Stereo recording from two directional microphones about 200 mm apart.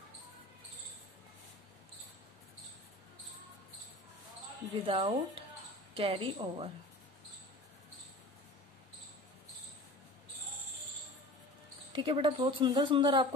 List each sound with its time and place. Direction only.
4.8 s a woman's voice: 25° right (ahead or behind)
11.9 s a woman's voice: 25° right (ahead or behind)